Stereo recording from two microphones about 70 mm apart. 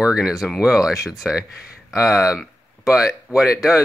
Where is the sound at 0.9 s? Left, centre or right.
Left.